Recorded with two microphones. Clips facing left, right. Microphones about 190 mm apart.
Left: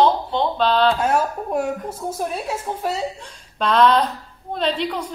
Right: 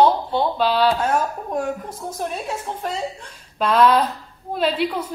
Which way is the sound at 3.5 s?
5° right (ahead or behind).